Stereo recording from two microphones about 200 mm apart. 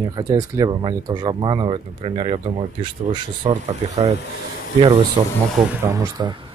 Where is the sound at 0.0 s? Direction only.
20° right (ahead or behind).